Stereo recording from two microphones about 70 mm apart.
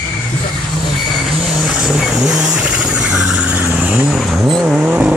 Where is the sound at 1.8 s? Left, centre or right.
Centre.